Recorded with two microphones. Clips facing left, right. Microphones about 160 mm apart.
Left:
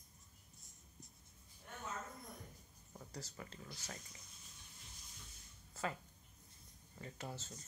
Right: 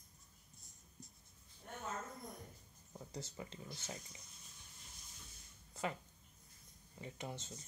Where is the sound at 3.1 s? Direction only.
25° right (ahead or behind).